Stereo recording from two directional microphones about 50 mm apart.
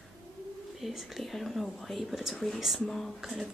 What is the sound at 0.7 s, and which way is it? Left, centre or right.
Speech, centre.